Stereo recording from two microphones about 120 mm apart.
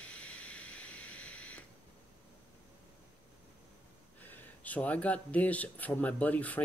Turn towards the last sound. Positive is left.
turn(degrees=15)  # may be behind; listen again after turning